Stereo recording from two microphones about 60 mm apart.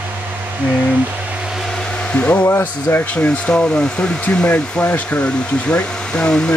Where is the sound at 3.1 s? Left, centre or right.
Centre.